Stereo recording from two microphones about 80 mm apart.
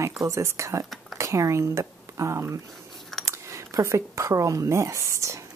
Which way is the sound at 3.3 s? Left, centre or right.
Right.